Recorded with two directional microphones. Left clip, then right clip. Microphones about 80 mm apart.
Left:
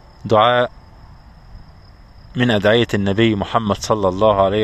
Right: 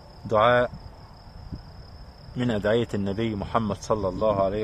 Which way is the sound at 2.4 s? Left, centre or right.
Left.